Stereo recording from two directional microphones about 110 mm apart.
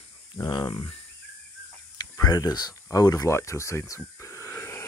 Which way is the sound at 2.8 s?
35° left (ahead or behind).